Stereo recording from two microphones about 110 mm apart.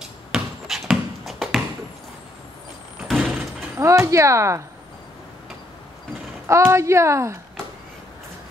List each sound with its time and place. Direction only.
0.0 s basketball bounce: 5° right (ahead or behind)
3.1 s door: 5° right (ahead or behind)
3.7 s speech: 25° right (ahead or behind)
6.4 s speech: 25° right (ahead or behind)